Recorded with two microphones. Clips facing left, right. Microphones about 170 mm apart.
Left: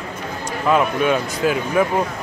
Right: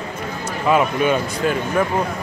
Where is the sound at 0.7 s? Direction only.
Centre (ahead or behind).